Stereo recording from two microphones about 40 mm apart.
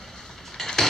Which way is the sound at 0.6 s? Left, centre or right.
Centre.